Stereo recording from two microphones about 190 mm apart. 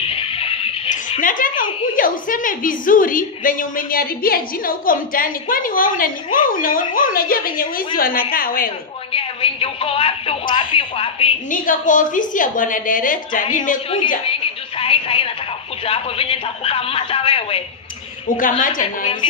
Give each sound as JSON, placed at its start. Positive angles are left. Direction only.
{"t": 0.1, "sound": "music", "side_deg": 30}
{"t": 1.2, "sound": "a woman's voice", "side_deg": 45}
{"t": 9.1, "sound": "a man's voice", "side_deg": 30}
{"t": 11.5, "sound": "a woman's voice", "side_deg": 45}
{"t": 13.9, "sound": "a woman's voice", "side_deg": 30}
{"t": 18.3, "sound": "a woman's voice", "side_deg": 45}